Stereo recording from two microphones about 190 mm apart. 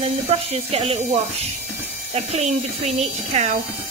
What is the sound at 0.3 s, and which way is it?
Speech, 30° right (ahead or behind).